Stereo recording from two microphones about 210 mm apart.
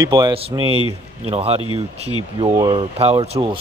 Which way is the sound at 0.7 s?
25° left (ahead or behind).